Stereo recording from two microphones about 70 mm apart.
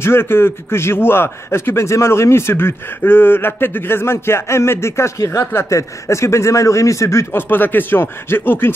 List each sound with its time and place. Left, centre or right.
0.0 s a man's voice: left